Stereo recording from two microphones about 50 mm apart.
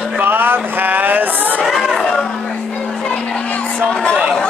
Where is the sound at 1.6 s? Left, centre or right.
Centre.